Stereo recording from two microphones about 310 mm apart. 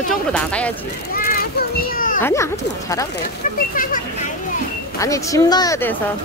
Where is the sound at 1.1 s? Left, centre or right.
Left.